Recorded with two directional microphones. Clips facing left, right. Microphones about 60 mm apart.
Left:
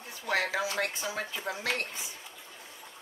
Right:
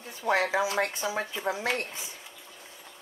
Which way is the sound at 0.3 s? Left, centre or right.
Right.